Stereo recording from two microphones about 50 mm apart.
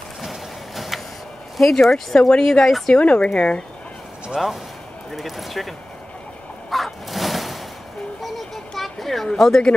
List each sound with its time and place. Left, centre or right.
0.2 s vehicle: centre
1.6 s speech: centre
3.0 s speech: left
4.4 s speech: centre
6.7 s a sound: centre